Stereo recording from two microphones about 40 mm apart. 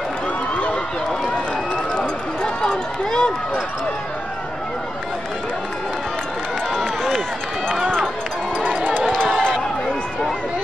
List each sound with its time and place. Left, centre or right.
2.0 s run: left
6.7 s run: centre